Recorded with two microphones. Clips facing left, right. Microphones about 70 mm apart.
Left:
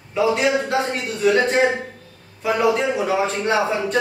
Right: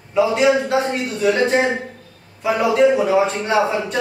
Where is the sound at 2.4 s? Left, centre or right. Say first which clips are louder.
Right 3 dB; centre.